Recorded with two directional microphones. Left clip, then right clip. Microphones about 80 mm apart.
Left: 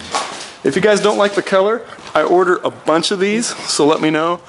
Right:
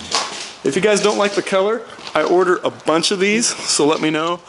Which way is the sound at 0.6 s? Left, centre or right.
Centre.